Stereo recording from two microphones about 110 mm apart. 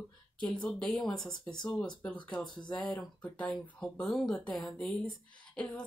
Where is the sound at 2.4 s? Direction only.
40° left (ahead or behind).